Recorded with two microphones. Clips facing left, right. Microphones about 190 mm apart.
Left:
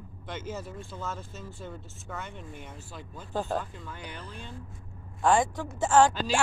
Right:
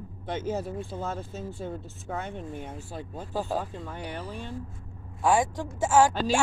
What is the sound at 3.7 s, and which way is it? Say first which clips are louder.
Speech: right 6 dB; 65° right (ahead or behind).